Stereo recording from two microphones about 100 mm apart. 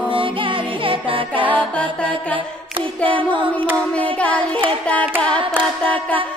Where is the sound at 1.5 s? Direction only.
10° left (ahead or behind).